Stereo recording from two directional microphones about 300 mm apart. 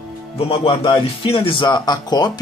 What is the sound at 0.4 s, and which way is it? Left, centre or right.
Speech, centre.